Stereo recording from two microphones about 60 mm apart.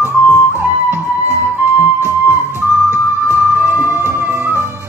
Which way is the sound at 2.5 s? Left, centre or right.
Right.